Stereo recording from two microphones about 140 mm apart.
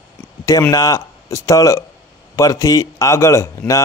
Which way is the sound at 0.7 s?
25° left (ahead or behind).